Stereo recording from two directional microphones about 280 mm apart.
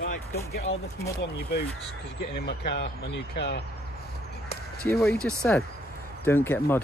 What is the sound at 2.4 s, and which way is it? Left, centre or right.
Speech, left.